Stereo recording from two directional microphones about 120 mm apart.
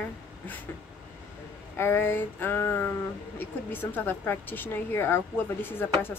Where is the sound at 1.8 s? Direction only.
20° left (ahead or behind).